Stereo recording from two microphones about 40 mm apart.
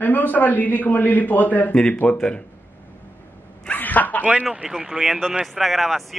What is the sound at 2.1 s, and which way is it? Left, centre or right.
Speech, left.